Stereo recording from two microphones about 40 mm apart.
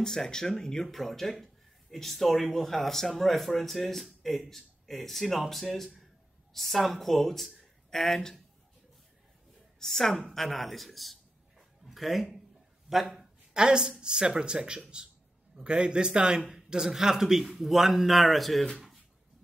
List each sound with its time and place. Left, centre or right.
0.0 s speech: centre
0.8 s speech: centre
9.8 s speech: centre
11.5 s dog: centre
12.9 s speech: centre
13.5 s a woman's voice: right; by 18.7 s centre